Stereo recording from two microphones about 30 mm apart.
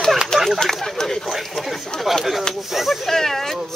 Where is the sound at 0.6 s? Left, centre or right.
Centre.